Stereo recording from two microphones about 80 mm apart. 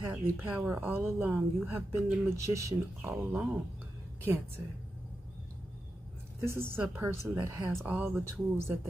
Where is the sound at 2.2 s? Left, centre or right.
Right.